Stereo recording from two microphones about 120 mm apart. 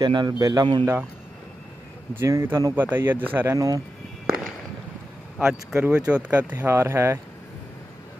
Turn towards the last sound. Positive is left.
turn(degrees=-20)  # may be behind; listen again after turning